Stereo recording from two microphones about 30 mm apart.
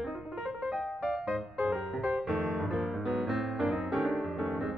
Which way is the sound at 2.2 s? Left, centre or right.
Centre.